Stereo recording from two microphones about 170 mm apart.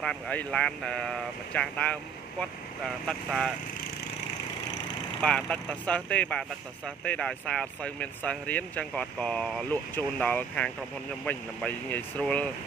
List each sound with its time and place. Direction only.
0.0 s speech: 5° left (ahead or behind)
5.2 s speech: 5° left (ahead or behind)